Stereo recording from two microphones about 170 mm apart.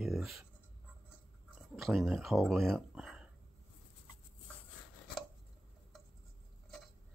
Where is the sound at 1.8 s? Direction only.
Centre (ahead or behind).